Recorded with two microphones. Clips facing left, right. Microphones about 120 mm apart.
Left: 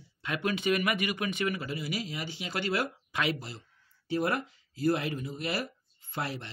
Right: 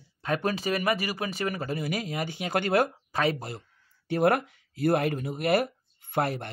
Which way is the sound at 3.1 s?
40° right (ahead or behind).